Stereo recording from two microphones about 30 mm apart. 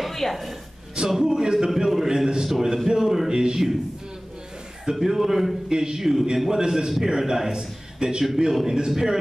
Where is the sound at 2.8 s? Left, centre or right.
Centre.